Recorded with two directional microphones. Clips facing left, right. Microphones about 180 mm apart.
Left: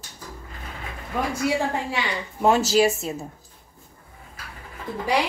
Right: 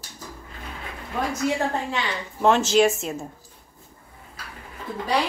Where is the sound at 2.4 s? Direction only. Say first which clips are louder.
Even; 5° left (ahead or behind).